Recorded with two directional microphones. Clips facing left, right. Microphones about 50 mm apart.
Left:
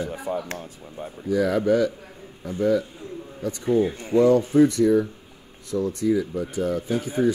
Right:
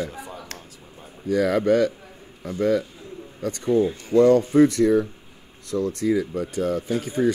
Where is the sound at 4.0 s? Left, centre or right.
Left.